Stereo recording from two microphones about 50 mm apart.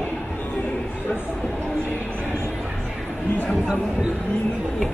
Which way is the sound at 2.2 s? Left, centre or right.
Left.